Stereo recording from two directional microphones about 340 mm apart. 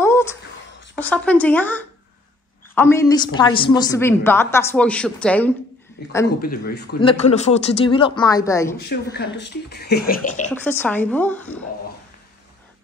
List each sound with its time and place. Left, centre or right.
0.0 s a sound: centre
0.9 s a woman's voice: centre
6.0 s a man's voice: left
7.0 s a woman's voice: centre
8.8 s speech: left
10.5 s speech: centre